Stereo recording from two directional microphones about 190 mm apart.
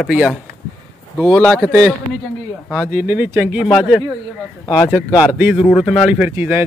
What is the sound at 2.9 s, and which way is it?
Speech, 10° right (ahead or behind).